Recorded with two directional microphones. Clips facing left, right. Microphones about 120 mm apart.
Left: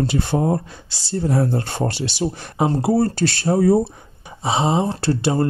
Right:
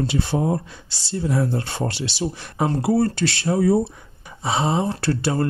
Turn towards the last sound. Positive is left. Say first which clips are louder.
# left 3 dB
turn(degrees=25)  # may be behind; listen again after turning